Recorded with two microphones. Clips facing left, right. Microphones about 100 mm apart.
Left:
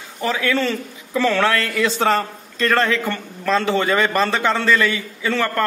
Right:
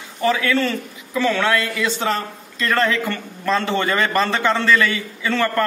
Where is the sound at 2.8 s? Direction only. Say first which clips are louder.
Even; 20° left (ahead or behind).